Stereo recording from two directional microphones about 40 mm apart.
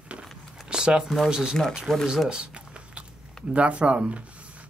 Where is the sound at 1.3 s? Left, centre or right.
Centre.